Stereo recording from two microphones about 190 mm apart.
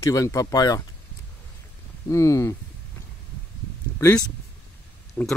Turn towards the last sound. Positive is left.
turn(degrees=10)  # may be behind; listen again after turning